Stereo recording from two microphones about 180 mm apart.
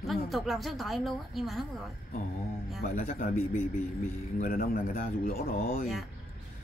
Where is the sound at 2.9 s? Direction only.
45° left (ahead or behind).